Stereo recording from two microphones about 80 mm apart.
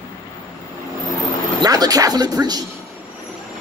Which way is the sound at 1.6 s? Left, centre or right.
Right.